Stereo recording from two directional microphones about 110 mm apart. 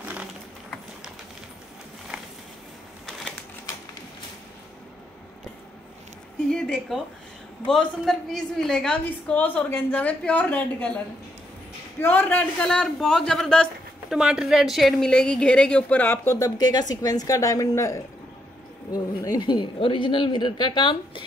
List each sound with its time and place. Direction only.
0.0 s a sound: 15° right (ahead or behind)
6.5 s a sound: 5° left (ahead or behind)
7.7 s speech: 5° left (ahead or behind)
12.0 s speech: 15° left (ahead or behind)
14.1 s speech: 5° right (ahead or behind); by 18.0 s 30° left (ahead or behind)
19.2 s a woman's voice: 40° left (ahead or behind)